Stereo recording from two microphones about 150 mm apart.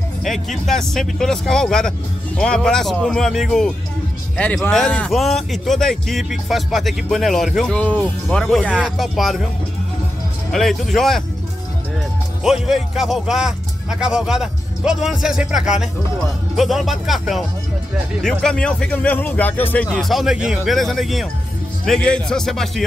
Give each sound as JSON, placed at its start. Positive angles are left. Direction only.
{"t": 0.2, "sound": "a man's voice", "side_deg": 0}
{"t": 10.5, "sound": "a man's voice", "side_deg": 0}
{"t": 12.4, "sound": "a man's voice", "side_deg": -5}
{"t": 19.9, "sound": "a man's voice", "side_deg": 0}